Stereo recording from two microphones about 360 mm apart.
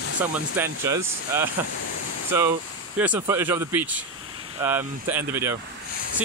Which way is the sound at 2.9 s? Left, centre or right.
Centre.